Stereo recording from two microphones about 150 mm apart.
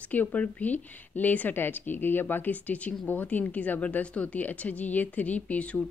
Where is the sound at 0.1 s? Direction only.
10° left (ahead or behind).